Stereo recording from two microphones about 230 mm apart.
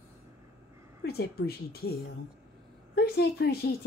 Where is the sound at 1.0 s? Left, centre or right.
Left.